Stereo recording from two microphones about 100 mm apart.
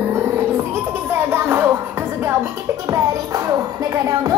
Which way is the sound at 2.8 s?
35° right (ahead or behind).